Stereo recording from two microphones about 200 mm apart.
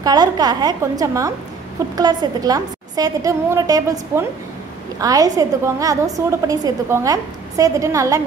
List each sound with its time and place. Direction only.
0.0 s a woman's voice: 20° right (ahead or behind)